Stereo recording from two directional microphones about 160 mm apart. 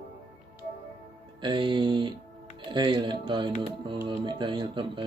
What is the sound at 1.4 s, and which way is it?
Speech, 30° right (ahead or behind).